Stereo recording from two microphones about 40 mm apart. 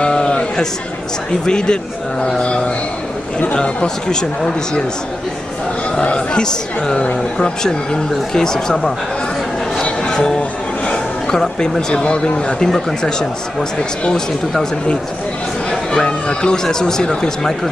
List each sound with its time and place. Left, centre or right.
0.0 s a sound: left
1.4 s speech: centre
5.9 s speech: left
9.8 s a sound: left
11.2 s speech: centre
14.5 s speech: centre